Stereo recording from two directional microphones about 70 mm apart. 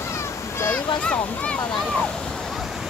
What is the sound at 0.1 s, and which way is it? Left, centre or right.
Splash, left.